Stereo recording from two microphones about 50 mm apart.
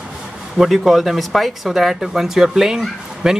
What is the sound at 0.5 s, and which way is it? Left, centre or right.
Speech, centre.